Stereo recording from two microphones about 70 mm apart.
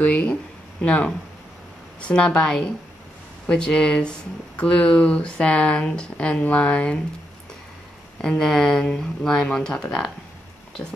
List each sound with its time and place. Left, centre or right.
0.0 s speech: centre
8.2 s speech: centre